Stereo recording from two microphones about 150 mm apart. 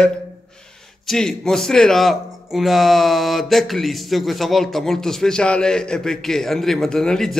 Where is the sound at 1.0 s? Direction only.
5° left (ahead or behind).